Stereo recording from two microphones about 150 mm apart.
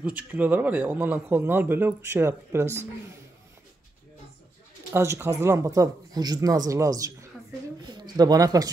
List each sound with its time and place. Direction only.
0.0 s speech: 10° right (ahead or behind)
4.9 s a man's voice: 20° right (ahead or behind)